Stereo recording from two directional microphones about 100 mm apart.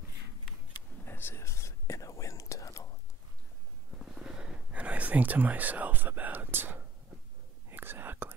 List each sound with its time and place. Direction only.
1.0 s whispering: 20° left (ahead or behind)
3.9 s a sound: 5° right (ahead or behind); by 6.9 s 20° right (ahead or behind)
7.7 s whispering: 20° right (ahead or behind)